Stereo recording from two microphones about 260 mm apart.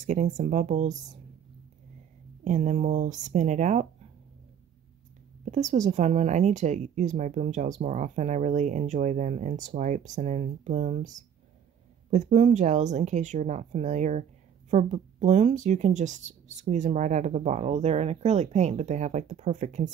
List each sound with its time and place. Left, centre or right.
0.0 s speech: right
2.4 s speech: right
5.4 s speech: right